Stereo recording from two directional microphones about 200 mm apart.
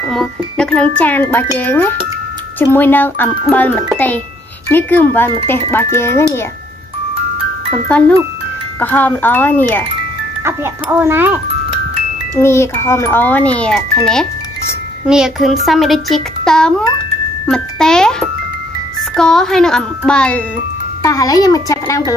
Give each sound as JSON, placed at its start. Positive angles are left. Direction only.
{"t": 0.1, "sound": "a child's voice", "side_deg": 0}
{"t": 8.7, "sound": "a child's voice", "side_deg": 10}
{"t": 10.4, "sound": "speech", "side_deg": -10}
{"t": 12.4, "sound": "a child's voice", "side_deg": 10}
{"t": 15.0, "sound": "a child's voice", "side_deg": -5}
{"t": 19.1, "sound": "speech", "side_deg": 0}
{"t": 21.0, "sound": "a child's voice", "side_deg": 15}